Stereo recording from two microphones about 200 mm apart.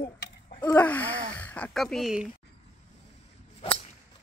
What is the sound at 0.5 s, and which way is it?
Wheeze, 20° left (ahead or behind).